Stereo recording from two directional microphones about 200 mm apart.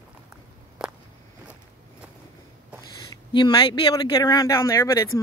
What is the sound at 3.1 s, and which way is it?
Speech, 20° left (ahead or behind).